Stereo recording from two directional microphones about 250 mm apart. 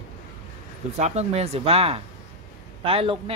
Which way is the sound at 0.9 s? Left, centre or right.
Right.